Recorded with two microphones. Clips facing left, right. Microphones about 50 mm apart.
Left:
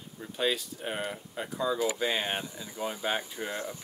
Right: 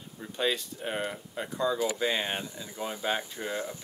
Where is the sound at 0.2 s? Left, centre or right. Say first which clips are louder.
Even; centre.